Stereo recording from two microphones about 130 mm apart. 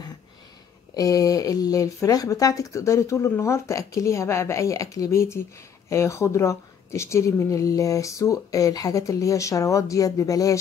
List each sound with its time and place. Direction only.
0.9 s a woman's voice: 25° left (ahead or behind)